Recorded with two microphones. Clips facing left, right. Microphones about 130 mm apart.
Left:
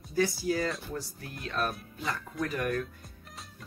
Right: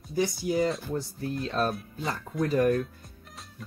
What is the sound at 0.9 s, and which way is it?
Speech, 30° right (ahead or behind).